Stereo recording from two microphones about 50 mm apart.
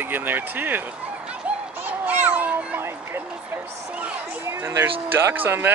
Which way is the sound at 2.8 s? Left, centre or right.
Right.